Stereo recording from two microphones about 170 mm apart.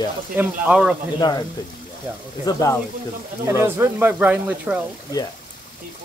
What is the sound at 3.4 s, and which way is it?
Speech, 15° right (ahead or behind).